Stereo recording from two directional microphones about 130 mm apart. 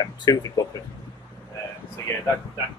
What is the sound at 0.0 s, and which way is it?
Speech, 30° left (ahead or behind).